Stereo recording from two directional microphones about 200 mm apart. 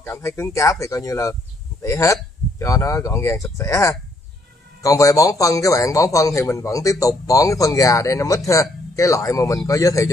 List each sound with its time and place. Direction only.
0.0 s a man's voice: 10° left (ahead or behind)